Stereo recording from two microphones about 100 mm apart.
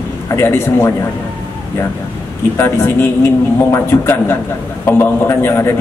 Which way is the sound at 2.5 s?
25° left (ahead or behind).